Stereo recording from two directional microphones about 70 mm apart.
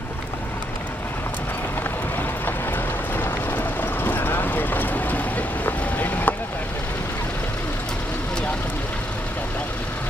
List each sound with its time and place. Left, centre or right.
3.2 s vehicle: left